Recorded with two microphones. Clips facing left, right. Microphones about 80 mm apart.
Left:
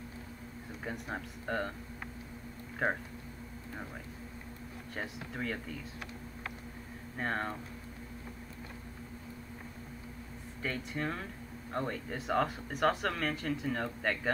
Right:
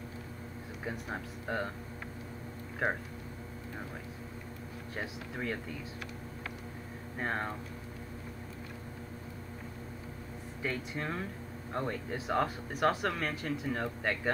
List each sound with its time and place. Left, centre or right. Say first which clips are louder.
0.8 s speech: right 1 dB; centre
4.9 s speech: even; centre
7.2 s speech: even; centre
10.6 s speech: even; centre